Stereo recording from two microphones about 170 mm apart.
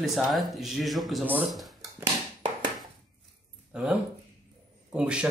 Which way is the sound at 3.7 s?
5° right (ahead or behind).